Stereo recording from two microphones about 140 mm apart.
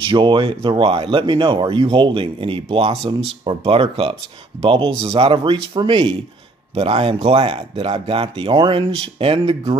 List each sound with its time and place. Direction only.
0.0 s speech: 35° right (ahead or behind)